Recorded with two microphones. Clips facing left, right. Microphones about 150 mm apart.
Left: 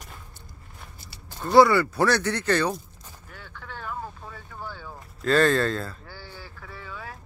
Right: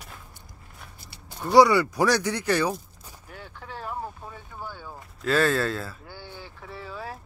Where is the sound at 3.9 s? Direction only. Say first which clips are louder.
Right 1 dB; 20° right (ahead or behind).